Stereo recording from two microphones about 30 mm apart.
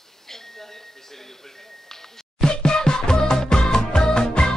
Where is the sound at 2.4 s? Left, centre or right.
Left.